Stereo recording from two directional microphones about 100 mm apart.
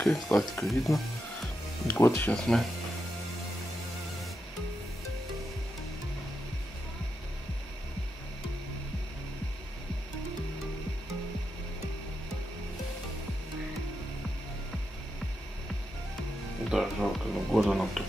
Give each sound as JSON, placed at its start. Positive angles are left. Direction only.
{"t": 0.0, "sound": "speech", "side_deg": 5}
{"t": 1.9, "sound": "speech", "side_deg": 20}
{"t": 2.3, "sound": "speech", "side_deg": 5}
{"t": 16.7, "sound": "music", "side_deg": 0}